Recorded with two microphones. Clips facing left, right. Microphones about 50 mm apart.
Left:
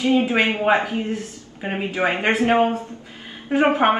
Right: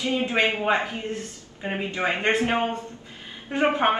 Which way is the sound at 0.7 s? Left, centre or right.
Left.